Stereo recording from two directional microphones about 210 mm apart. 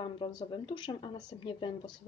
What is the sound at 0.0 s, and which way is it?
A woman's voice, 20° left (ahead or behind).